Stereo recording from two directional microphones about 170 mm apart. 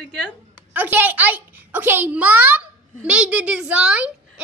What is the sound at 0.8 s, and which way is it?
A child's voice, 10° right (ahead or behind).